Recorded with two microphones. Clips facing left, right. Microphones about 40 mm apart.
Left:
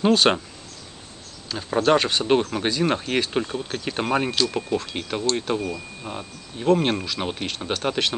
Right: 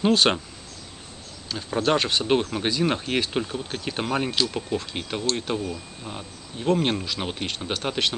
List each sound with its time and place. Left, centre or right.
0.0 s speech: centre
1.5 s speech: centre